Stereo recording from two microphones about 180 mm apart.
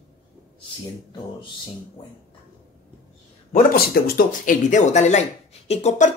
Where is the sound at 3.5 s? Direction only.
55° left (ahead or behind).